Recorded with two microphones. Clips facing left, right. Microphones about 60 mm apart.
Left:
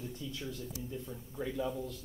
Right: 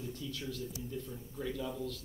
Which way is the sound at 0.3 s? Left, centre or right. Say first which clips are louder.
Right 1 dB; left.